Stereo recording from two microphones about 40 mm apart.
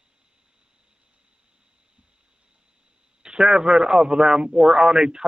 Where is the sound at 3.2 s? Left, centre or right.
Centre.